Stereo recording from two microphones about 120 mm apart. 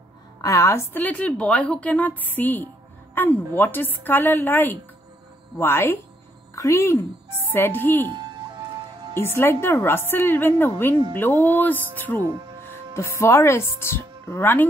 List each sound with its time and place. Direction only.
0.4 s a woman's voice: 25° left (ahead or behind)
8.1 s music: 35° right (ahead or behind)
9.1 s a woman's voice: 20° left (ahead or behind)
12.2 s speech: 30° right (ahead or behind)
12.6 s speech: 20° left (ahead or behind)